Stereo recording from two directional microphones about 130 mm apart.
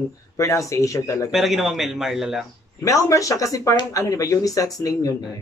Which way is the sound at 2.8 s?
25° left (ahead or behind).